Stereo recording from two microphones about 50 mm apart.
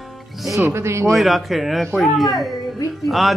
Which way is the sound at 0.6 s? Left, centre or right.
Right.